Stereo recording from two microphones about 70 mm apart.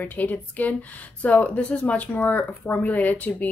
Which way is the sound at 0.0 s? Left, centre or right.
Left.